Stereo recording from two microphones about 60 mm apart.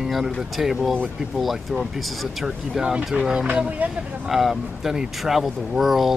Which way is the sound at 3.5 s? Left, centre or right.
Right.